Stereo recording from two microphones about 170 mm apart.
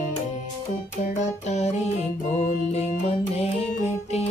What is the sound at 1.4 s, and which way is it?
Music, 40° left (ahead or behind).